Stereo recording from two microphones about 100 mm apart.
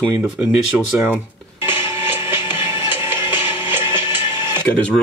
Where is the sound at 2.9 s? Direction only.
20° right (ahead or behind).